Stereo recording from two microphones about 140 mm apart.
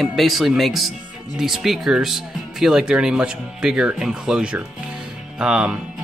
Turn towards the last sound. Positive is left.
turn(degrees=-5)  # may be behind; listen again after turning